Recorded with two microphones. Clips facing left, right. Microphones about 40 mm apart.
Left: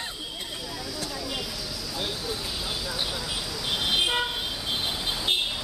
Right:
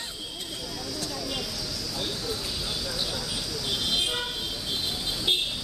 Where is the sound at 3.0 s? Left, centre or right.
Centre.